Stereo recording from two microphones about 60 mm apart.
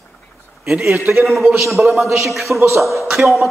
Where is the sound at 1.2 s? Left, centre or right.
Centre.